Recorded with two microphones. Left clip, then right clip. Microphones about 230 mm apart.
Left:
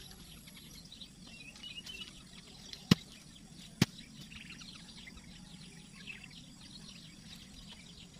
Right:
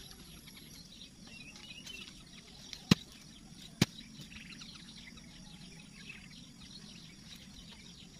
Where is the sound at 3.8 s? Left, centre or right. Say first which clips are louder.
Right 1 dB; right.